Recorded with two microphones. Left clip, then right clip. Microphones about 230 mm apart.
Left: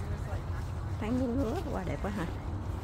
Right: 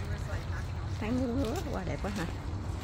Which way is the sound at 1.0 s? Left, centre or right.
Centre.